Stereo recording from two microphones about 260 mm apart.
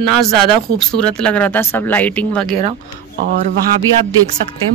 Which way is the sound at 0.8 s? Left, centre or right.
Centre.